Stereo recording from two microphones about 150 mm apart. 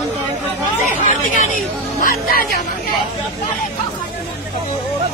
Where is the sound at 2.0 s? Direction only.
75° left (ahead or behind).